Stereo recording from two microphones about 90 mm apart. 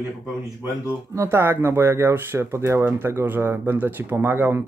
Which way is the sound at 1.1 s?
30° right (ahead or behind).